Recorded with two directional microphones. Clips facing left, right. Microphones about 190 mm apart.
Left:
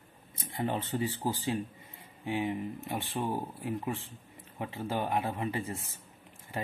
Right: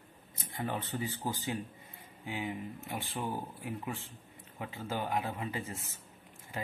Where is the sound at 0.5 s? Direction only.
30° left (ahead or behind).